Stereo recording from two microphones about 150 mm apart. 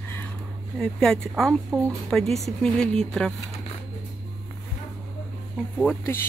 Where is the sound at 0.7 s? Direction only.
5° left (ahead or behind).